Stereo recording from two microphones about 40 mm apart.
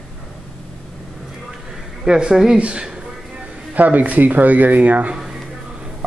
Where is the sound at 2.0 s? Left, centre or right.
Centre.